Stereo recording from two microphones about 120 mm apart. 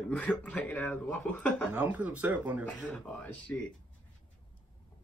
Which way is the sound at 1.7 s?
15° right (ahead or behind).